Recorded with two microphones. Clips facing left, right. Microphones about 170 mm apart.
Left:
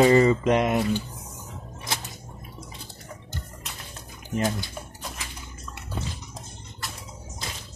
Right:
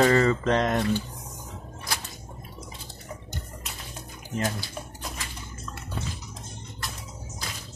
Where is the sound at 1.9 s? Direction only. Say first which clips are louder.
Left 1 dB; 25° left (ahead or behind).